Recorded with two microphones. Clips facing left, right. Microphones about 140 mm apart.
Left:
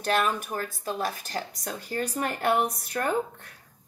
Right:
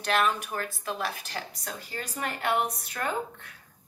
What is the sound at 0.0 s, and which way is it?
Speech, 40° left (ahead or behind).